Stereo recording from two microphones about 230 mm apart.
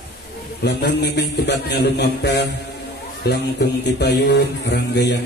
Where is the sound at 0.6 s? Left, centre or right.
Left.